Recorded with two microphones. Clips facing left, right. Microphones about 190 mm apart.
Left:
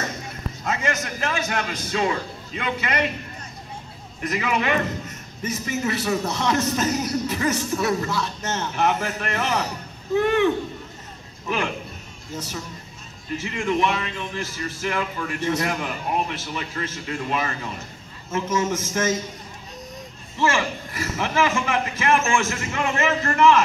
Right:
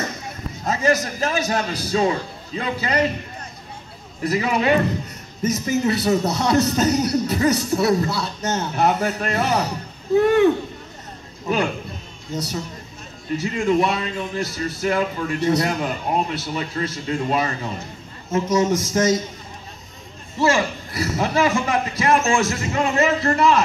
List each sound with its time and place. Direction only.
0.7 s a man's voice: 35° right (ahead or behind)
4.2 s a man's voice: 35° right (ahead or behind)
13.4 s a man's voice: 35° right (ahead or behind)
20.3 s a man's voice: 40° right (ahead or behind)